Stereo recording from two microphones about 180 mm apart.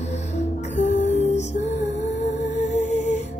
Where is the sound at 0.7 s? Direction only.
40° left (ahead or behind).